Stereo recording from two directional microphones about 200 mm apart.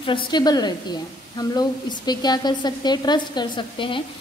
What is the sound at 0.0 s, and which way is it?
A woman's voice, 25° left (ahead or behind).